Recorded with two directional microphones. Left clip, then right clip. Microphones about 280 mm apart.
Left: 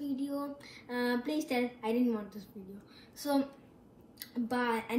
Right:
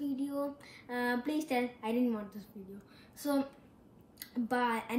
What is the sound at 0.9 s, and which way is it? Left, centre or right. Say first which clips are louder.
A woman's voice: left 1 dB; centre.